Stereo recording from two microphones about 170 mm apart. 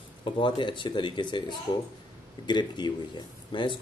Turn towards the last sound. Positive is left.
turn(degrees=30)  # may be behind; listen again after turning